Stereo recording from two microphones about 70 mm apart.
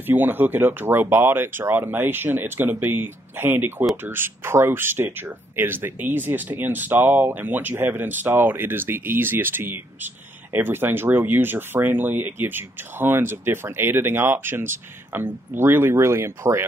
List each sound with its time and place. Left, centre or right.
0.0 s speech: right